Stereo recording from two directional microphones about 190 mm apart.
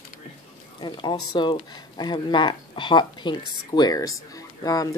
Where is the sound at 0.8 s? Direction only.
25° left (ahead or behind).